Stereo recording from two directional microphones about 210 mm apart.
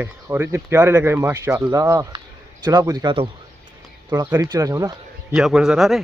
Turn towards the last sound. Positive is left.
turn(degrees=0)  # may be behind; listen again after turning